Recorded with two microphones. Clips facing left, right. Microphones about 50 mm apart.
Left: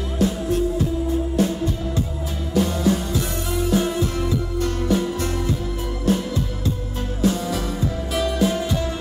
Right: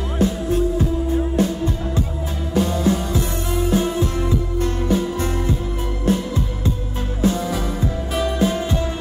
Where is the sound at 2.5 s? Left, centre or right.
Right.